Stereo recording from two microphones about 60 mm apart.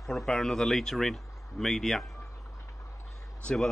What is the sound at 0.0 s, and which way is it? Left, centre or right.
Speech, centre.